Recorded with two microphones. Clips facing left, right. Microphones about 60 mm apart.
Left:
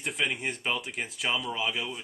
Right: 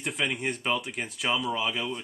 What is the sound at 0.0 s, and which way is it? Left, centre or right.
A man's voice, centre.